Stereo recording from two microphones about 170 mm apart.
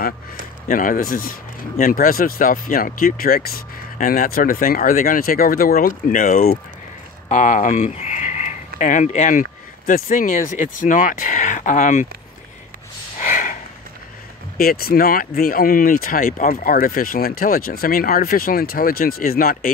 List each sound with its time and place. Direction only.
0.7 s speech: 55° left (ahead or behind)
13.2 s a sound: 50° left (ahead or behind)
14.6 s speech: 60° left (ahead or behind)